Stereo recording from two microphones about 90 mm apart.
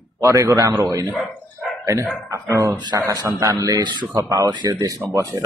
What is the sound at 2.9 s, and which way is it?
Speech, 45° right (ahead or behind).